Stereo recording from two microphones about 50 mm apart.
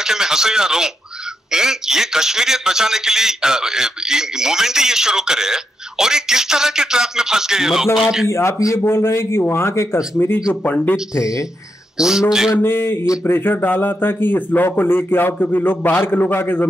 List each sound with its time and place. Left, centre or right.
0.0 s a man's voice: centre
8.3 s a man's voice: left
10.2 s speech: left
12.0 s a man's voice: centre
12.6 s speech: left
13.0 s speech: left
13.3 s speech: left